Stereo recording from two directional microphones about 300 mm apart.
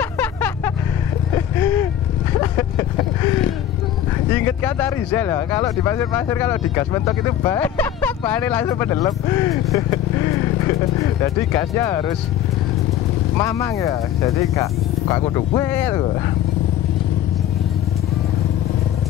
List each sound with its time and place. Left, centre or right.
0.0 s a sound: centre
4.5 s speech: centre
11.5 s speech: centre
13.4 s speech: centre